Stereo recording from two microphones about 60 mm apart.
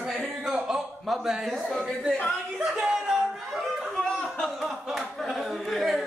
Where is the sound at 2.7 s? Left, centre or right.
Centre.